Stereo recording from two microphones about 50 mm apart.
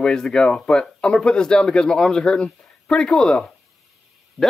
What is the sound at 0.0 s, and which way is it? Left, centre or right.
Speech, centre.